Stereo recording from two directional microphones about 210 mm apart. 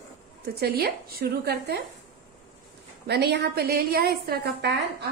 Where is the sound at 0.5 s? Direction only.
45° right (ahead or behind).